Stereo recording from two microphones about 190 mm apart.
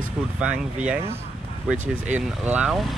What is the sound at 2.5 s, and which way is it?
Speech, 5° right (ahead or behind).